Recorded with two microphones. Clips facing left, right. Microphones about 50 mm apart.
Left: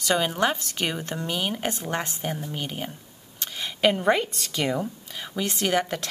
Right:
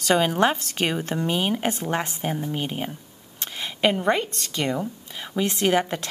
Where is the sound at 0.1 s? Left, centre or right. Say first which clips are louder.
Right 3 dB; centre.